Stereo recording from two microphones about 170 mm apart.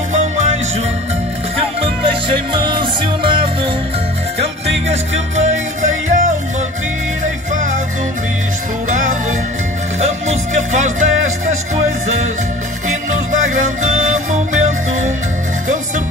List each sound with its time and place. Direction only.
0.1 s music: 45° right (ahead or behind)
1.8 s music: 30° right (ahead or behind); by 6.2 s 45° right (ahead or behind)
8.8 s music: 50° right (ahead or behind)
13.3 s music: 50° right (ahead or behind)